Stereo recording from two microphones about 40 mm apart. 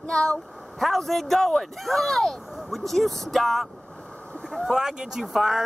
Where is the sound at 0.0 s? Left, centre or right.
Left.